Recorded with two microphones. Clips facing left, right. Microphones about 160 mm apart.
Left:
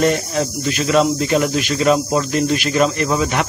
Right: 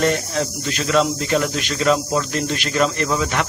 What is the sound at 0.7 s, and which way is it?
Speech, 15° left (ahead or behind).